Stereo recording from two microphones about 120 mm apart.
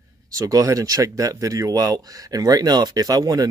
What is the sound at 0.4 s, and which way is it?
Speech, 25° right (ahead or behind).